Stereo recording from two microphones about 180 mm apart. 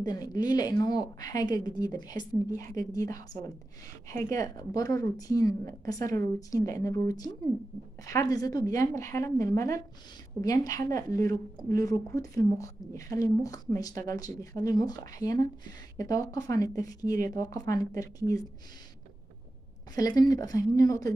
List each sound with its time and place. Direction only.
0.0 s a woman's voice: 20° left (ahead or behind)
20.0 s a woman's voice: 20° left (ahead or behind)